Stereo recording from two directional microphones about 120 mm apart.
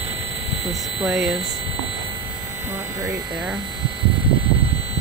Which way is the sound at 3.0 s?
10° right (ahead or behind).